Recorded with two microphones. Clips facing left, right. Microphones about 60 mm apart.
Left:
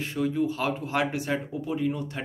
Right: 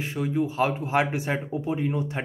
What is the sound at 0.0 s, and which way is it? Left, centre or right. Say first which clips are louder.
Speech: even; centre.